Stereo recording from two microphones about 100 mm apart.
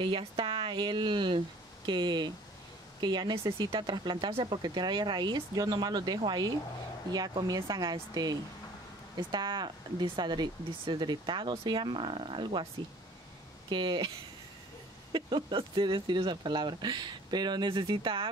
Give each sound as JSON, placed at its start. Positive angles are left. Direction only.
{"t": 0.0, "sound": "speech", "side_deg": -60}
{"t": 4.5, "sound": "speech", "side_deg": -45}
{"t": 13.7, "sound": "speech", "side_deg": -50}
{"t": 15.1, "sound": "speech", "side_deg": -50}